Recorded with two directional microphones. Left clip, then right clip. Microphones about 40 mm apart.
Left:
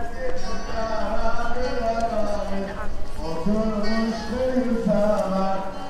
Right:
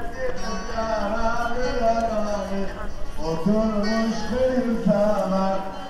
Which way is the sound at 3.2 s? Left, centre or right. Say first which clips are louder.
Right 3 dB; centre.